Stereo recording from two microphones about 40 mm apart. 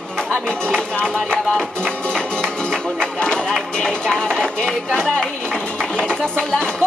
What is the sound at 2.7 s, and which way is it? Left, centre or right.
Music, centre.